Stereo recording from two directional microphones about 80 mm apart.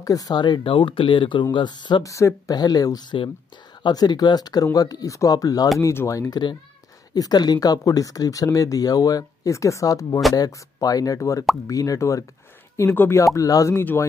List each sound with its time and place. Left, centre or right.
0.0 s speech: left
0.4 s speech: left
2.0 s speech: left
2.5 s speech: left
5.8 s speech: left
7.2 s speech: left
12.7 s speech: left
13.2 s speech: left
13.7 s speech: left